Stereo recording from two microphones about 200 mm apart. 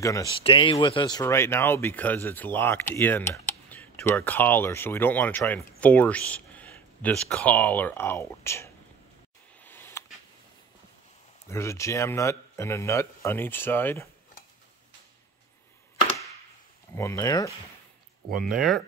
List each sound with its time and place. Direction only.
0.0 s speech: 15° left (ahead or behind)
9.6 s a sound: 10° left (ahead or behind)
11.4 s speech: 15° left (ahead or behind)
16.9 s speech: 15° left (ahead or behind)
18.4 s speech: centre (ahead or behind)